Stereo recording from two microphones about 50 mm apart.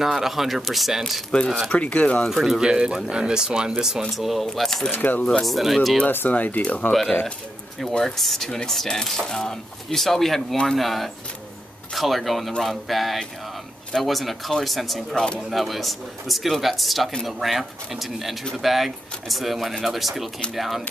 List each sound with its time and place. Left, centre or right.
0.0 s speech: centre
1.7 s speech: left
2.2 s speech: centre
4.1 s speech: centre
4.9 s speech: left
5.4 s speech: centre
6.0 s speech: left
6.9 s speech: centre